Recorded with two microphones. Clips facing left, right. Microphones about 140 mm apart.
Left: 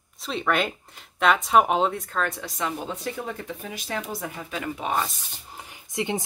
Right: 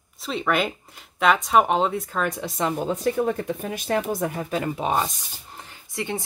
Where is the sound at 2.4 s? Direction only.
30° right (ahead or behind).